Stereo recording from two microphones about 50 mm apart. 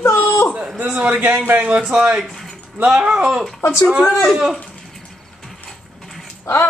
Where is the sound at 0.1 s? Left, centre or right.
Left.